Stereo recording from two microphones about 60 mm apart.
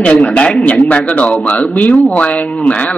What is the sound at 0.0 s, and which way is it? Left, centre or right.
A man's voice, centre.